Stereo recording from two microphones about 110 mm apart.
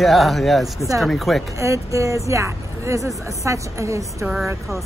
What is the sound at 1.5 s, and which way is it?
Speech, 30° right (ahead or behind).